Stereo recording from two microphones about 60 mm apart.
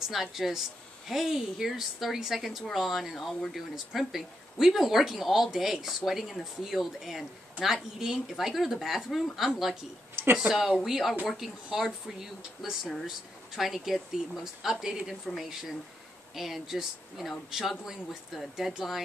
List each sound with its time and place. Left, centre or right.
0.0 s a woman's voice: centre
10.2 s a sound: right
10.8 s a woman's voice: centre